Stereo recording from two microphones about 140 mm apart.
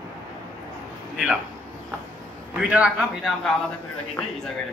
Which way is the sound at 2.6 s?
5° right (ahead or behind).